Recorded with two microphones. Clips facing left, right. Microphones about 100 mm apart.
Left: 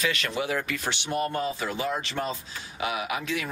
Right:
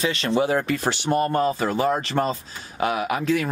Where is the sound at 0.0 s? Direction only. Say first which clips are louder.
Right 7 dB; 30° right (ahead or behind).